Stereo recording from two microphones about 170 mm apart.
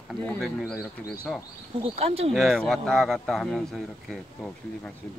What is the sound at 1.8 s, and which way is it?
Speech, 35° right (ahead or behind).